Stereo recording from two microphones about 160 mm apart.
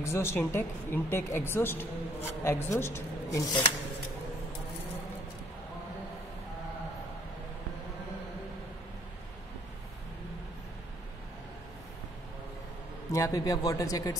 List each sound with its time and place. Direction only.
0.0 s speech: 15° left (ahead or behind)
13.1 s speech: 20° left (ahead or behind)